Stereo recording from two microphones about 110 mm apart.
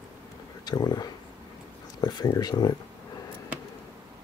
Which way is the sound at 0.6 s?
40° left (ahead or behind).